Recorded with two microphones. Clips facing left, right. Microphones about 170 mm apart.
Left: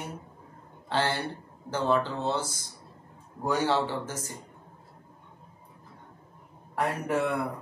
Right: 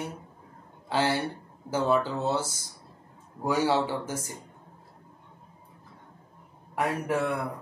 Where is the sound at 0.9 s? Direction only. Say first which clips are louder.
Right 2 dB; 10° right (ahead or behind).